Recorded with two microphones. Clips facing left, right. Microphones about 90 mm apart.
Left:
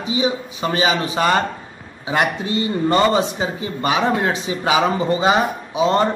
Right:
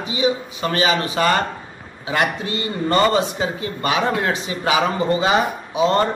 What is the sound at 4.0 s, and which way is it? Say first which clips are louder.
A man's voice: left 2 dB; centre (ahead or behind).